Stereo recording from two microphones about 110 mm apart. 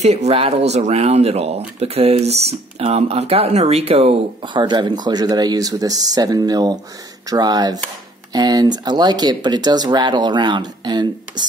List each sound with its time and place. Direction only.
0.0 s speech: 80° right
4.4 s speech: 45° right (ahead or behind)